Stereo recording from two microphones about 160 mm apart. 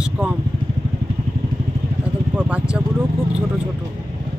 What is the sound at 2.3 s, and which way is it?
Speech, 10° right (ahead or behind).